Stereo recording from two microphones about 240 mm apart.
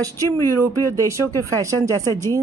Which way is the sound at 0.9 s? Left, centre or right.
Centre.